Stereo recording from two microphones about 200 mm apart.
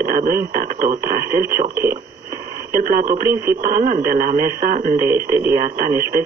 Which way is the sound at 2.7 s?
45° right (ahead or behind).